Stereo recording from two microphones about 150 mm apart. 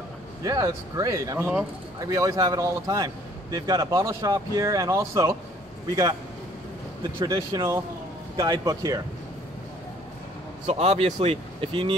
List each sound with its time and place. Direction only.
0.4 s a man's voice: 25° right (ahead or behind)
7.2 s a man's voice: 20° right (ahead or behind)
10.7 s speech: 45° right (ahead or behind)